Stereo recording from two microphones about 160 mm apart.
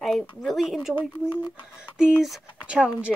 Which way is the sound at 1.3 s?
30° left (ahead or behind).